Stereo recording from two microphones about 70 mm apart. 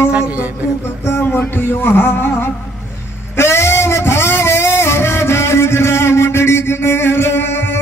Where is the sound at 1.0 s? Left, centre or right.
Left.